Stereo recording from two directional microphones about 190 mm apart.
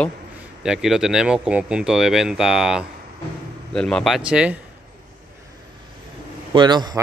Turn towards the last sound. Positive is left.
turn(degrees=-20)  # may be behind; listen again after turning